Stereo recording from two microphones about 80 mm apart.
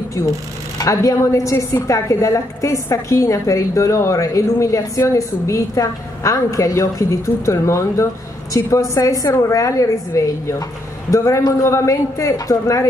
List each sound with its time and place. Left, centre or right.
0.2 s a woman's voice: left